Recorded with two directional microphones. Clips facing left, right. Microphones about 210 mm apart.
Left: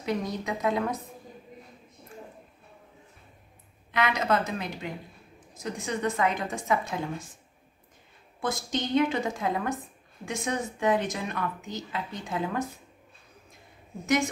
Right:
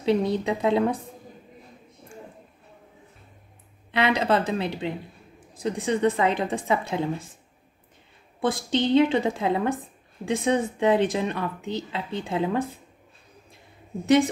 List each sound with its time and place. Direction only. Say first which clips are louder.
0.0 s speech: right 8 dB; 30° right (ahead or behind)
3.9 s speech: right 4 dB; 30° right (ahead or behind)
8.4 s speech: right 6 dB; 30° right (ahead or behind)
14.0 s a woman's voice: right 7 dB; 30° right (ahead or behind)